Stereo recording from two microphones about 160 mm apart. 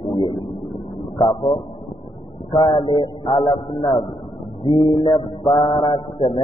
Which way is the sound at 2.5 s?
30° left (ahead or behind).